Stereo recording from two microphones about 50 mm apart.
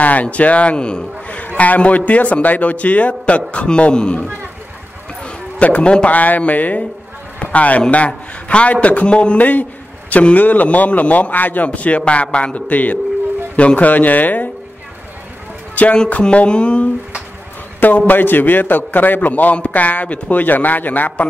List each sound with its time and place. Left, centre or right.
0.0 s speech: left
1.6 s a man's voice: left
5.2 s bow-wow: left
6.1 s a man's voice: left
15.7 s a man's voice: left
17.7 s a man's voice: left